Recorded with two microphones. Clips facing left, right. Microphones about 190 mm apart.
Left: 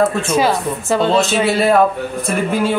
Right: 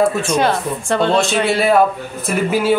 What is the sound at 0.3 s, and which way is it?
Speech, 5° left (ahead or behind).